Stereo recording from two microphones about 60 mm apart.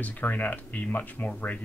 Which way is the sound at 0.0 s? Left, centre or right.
Left.